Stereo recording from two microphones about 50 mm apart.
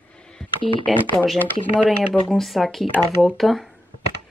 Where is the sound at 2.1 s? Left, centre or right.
Centre.